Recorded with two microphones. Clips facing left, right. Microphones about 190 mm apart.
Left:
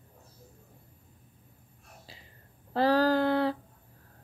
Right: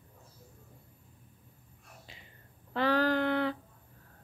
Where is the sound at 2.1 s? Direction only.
35° left (ahead or behind).